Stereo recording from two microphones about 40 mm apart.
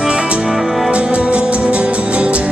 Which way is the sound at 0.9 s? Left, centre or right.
Right.